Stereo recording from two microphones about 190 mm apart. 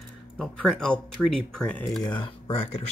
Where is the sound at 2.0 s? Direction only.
25° left (ahead or behind).